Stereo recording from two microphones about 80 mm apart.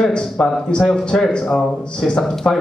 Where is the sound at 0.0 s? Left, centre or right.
Centre.